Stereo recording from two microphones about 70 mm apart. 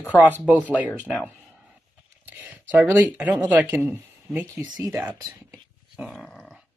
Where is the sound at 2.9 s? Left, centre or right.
Right.